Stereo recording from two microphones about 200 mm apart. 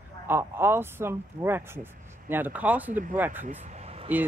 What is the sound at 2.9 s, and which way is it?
Speech, 40° right (ahead or behind).